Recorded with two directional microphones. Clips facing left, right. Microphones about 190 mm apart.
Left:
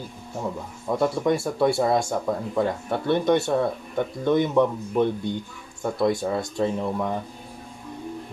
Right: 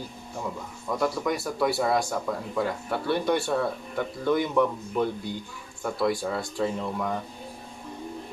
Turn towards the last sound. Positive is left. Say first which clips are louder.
# left 3 dB
turn(degrees=20)  # may be behind; listen again after turning